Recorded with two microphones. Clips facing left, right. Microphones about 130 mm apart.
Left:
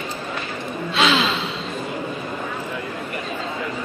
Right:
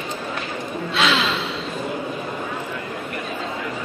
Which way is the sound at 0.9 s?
Centre (ahead or behind).